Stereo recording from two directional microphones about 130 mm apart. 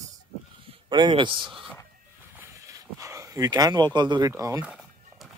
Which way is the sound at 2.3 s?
25° right (ahead or behind).